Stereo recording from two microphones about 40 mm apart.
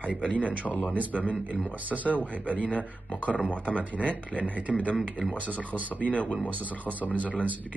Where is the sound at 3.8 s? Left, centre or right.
Right.